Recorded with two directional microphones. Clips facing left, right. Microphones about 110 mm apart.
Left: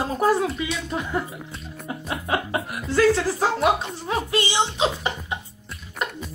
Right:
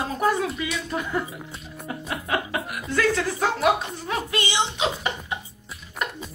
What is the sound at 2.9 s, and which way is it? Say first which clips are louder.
A woman's voice: left 4 dB; 30° left (ahead or behind).